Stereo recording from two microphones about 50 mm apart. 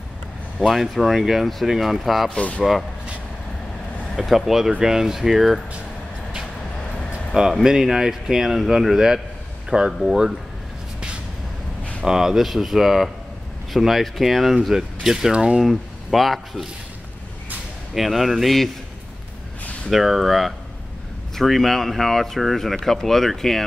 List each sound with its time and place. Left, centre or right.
0.6 s speech: centre
4.2 s a man's voice: centre
7.6 s a man's voice: centre
12.0 s speech: centre
15.6 s speech: centre
17.9 s speech: centre
19.9 s speech: centre